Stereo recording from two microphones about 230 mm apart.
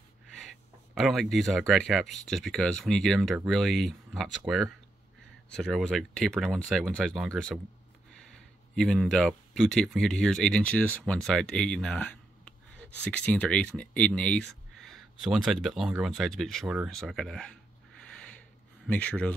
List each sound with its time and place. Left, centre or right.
0.3 s speech: centre
8.7 s speech: centre
18.9 s speech: centre